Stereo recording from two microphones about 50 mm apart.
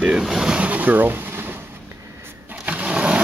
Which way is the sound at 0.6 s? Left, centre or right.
Right.